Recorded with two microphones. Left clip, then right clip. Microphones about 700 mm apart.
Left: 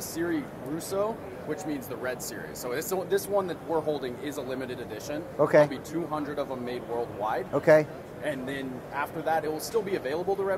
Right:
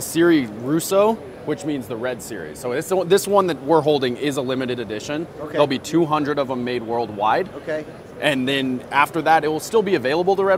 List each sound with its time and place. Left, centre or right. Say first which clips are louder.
0.1 s speech: right 15 dB; right
2.6 s speech: right 10 dB; right